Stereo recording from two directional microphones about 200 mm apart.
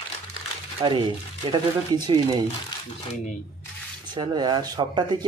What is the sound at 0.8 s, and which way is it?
Speech, 25° right (ahead or behind).